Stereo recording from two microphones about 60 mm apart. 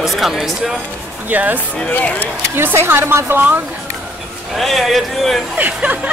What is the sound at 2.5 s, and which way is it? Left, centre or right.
Speech, right.